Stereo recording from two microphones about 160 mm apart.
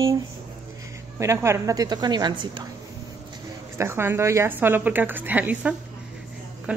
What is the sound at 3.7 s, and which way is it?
A woman's voice, 15° right (ahead or behind).